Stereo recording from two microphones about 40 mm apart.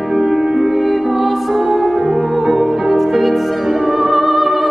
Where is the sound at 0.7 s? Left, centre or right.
Centre.